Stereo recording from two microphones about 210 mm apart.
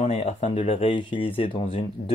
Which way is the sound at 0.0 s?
30° left (ahead or behind).